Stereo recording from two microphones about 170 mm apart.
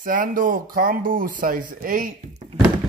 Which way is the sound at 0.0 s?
55° right (ahead or behind).